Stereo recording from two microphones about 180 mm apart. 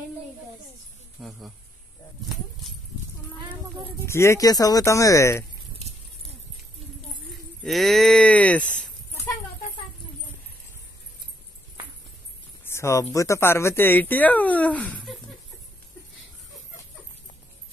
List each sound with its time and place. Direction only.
1.2 s speech: 5° right (ahead or behind)
4.0 s speech: 15° left (ahead or behind)
7.6 s speech: centre (ahead or behind)
12.6 s speech: 15° left (ahead or behind)